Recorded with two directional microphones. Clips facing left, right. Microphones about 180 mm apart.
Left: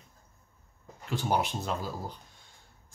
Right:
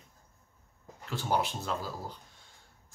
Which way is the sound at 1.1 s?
15° left (ahead or behind).